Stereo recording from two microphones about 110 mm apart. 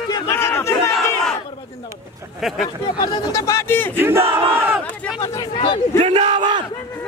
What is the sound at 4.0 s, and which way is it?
Battle cry, 20° right (ahead or behind).